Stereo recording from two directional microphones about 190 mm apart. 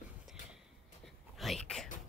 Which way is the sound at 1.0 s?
Centre (ahead or behind).